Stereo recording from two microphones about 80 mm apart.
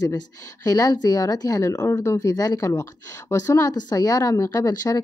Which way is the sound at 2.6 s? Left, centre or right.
Left.